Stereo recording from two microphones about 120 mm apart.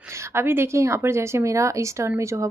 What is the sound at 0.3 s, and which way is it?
Speech, 20° right (ahead or behind).